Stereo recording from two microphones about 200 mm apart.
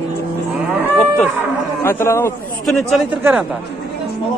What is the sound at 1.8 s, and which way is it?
Speech, 15° left (ahead or behind).